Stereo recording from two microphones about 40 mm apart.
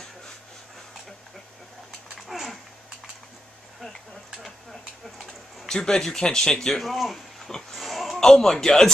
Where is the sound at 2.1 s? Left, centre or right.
Centre.